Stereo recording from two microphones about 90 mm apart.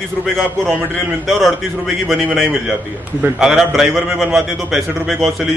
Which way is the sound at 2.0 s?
Centre (ahead or behind).